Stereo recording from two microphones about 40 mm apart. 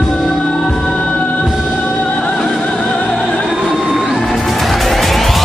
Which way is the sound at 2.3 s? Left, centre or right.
Centre.